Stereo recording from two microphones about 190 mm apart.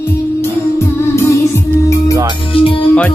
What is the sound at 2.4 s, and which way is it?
Speech, 25° left (ahead or behind).